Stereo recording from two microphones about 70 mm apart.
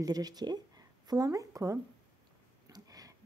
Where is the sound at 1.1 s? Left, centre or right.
Right.